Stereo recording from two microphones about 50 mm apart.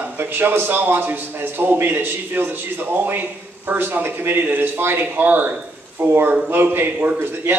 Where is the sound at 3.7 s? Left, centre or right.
Right.